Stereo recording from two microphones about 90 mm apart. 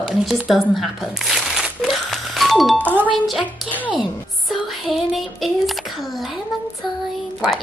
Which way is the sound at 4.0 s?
Centre (ahead or behind).